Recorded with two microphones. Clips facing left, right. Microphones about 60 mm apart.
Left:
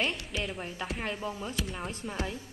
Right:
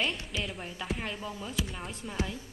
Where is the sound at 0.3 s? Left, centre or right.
Centre.